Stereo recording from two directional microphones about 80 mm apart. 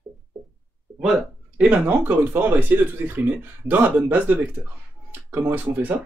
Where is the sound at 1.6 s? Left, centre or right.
Centre.